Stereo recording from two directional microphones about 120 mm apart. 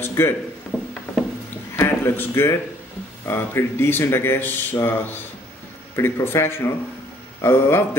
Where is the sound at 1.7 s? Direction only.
20° left (ahead or behind).